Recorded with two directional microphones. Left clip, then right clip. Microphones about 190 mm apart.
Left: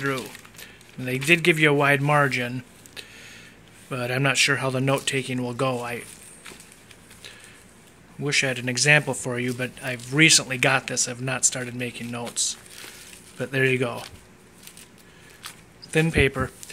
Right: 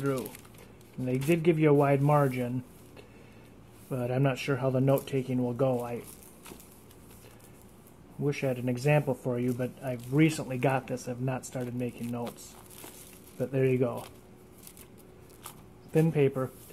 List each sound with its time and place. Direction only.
0.0 s speech: 20° left (ahead or behind)
1.0 s speech: 5° left (ahead or behind)
8.2 s speech: 10° left (ahead or behind)
9.0 s speech: 20° left (ahead or behind)
9.3 s speech: 10° left (ahead or behind)
13.4 s speech: 10° left (ahead or behind)
15.9 s speech: 10° left (ahead or behind)